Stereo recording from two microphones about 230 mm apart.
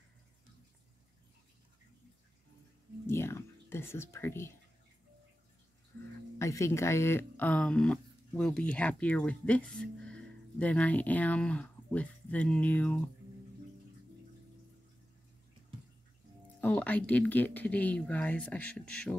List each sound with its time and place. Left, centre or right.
3.1 s speech: centre
6.3 s speech: centre
16.6 s speech: centre